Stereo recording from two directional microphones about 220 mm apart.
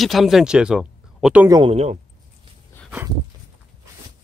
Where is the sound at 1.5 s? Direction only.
20° right (ahead or behind).